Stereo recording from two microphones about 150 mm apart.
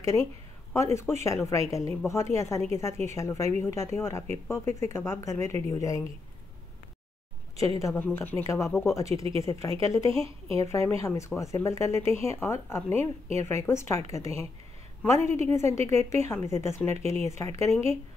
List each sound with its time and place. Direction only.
0.7 s a woman's voice: 20° left (ahead or behind)
7.8 s a woman's voice: 15° left (ahead or behind)